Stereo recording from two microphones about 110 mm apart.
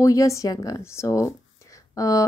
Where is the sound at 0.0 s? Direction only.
30° left (ahead or behind).